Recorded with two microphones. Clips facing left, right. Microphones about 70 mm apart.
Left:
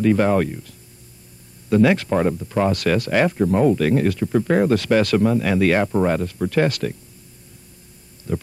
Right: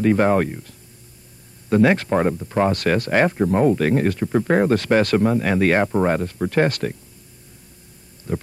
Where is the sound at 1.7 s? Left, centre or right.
Right.